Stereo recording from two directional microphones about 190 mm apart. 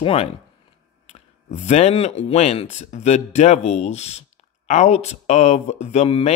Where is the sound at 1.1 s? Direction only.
35° left (ahead or behind).